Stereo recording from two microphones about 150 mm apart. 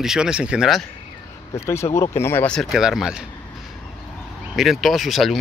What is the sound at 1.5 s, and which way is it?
Speech, 20° left (ahead or behind).